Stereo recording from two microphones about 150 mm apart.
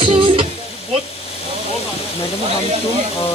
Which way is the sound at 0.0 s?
35° right (ahead or behind).